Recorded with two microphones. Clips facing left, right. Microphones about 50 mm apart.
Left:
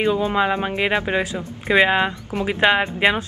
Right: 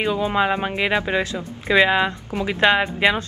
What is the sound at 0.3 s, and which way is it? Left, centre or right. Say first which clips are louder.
Speech: even; centre.